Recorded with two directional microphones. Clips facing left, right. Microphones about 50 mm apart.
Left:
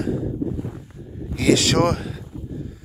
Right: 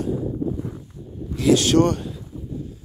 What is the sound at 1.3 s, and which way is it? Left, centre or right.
Speech, left.